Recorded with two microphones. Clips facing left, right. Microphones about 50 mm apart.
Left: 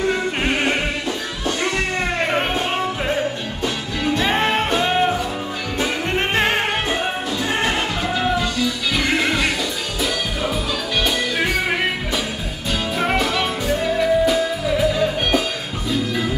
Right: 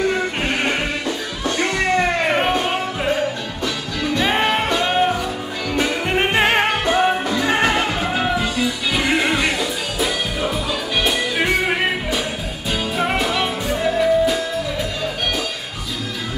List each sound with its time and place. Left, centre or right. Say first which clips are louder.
4.8 s music: right 1 dB; centre
6.0 s music: right 2 dB; centre
7.2 s music: right 3 dB; right
8.2 s music: left 1 dB; centre